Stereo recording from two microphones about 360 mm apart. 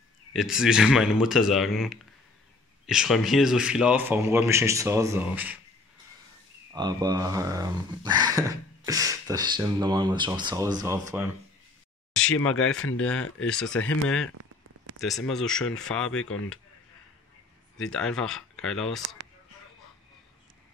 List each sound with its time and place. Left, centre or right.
0.3 s speech: centre
6.7 s speech: centre
12.4 s speech: centre
12.7 s speech: left
13.4 s speech: centre
16.1 s speech: left
17.7 s speech: centre